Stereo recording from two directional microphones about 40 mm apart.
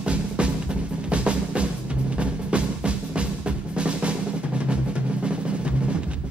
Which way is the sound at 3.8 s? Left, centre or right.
Right.